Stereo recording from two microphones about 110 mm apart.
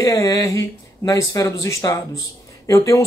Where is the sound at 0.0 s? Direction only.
30° left (ahead or behind).